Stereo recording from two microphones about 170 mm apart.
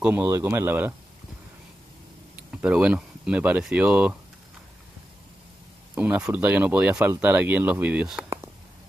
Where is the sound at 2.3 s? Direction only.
5° right (ahead or behind).